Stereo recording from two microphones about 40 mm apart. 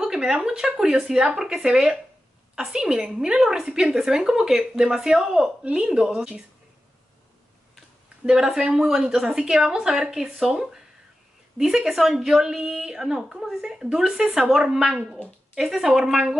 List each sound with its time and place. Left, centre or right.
0.0 s a sound: centre
0.4 s a woman's voice: centre
8.3 s speech: centre
11.9 s a woman's voice: centre